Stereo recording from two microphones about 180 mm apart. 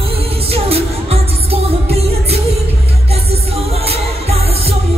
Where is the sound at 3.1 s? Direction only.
35° right (ahead or behind).